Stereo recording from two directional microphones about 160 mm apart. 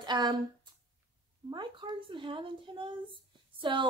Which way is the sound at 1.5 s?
30° right (ahead or behind).